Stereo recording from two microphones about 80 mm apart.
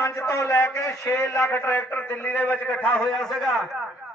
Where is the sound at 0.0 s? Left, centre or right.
Left.